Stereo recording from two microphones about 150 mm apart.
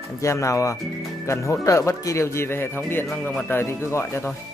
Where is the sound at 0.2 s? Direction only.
20° left (ahead or behind).